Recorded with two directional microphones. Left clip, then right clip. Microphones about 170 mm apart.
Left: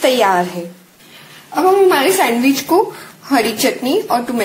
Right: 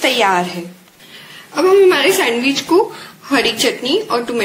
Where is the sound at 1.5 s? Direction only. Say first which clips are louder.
Right 1 dB; 40° left (ahead or behind).